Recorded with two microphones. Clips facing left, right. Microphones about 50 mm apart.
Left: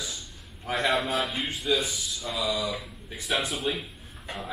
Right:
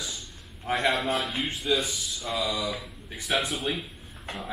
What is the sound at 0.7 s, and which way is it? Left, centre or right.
Speech, centre.